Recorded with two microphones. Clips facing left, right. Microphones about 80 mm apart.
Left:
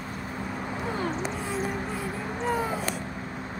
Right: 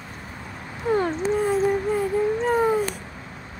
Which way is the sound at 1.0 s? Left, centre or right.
Right.